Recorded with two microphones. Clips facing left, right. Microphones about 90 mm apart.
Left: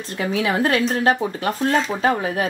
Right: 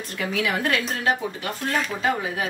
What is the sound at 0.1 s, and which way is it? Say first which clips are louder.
A woman's voice: left 4 dB; 30° left (ahead or behind).